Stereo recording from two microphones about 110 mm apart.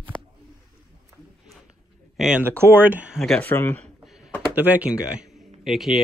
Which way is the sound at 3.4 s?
20° left (ahead or behind).